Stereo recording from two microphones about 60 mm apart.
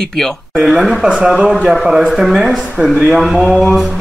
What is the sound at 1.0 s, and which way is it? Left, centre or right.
Speech, centre.